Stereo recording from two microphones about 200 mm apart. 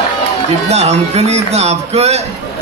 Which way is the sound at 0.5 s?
35° right (ahead or behind).